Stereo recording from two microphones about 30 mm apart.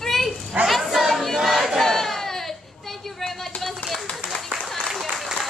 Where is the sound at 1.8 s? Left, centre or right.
Centre.